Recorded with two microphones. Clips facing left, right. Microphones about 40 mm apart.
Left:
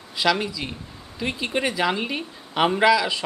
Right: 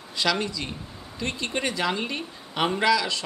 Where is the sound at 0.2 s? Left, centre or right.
Centre.